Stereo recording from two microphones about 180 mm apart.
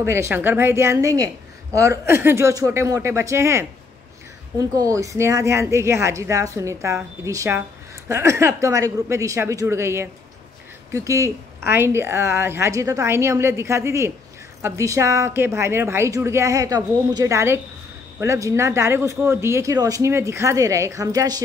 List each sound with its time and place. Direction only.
0.0 s speech: 15° right (ahead or behind)